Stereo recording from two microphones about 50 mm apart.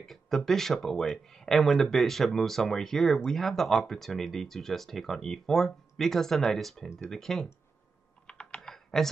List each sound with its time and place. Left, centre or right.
0.0 s speech: centre
8.3 s computer keyboard: centre
8.5 s computer keyboard: centre